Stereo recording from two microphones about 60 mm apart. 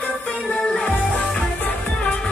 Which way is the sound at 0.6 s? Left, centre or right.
Left.